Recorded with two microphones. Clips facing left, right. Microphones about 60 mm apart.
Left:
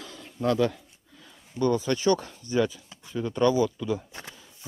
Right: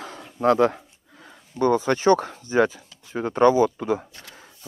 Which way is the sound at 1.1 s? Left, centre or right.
Right.